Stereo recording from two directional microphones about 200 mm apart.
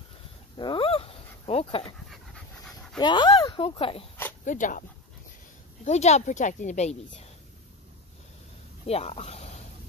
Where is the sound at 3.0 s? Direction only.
25° left (ahead or behind).